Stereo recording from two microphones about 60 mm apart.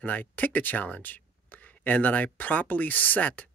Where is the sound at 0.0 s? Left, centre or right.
Left.